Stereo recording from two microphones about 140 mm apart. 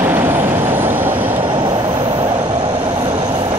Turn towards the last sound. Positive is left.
turn(degrees=-30)  # may be behind; listen again after turning